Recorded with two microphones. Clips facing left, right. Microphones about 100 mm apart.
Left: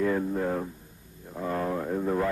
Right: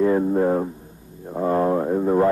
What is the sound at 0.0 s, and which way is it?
Speech, 30° right (ahead or behind).